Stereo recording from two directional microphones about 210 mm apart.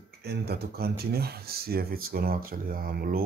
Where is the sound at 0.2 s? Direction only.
50° right (ahead or behind).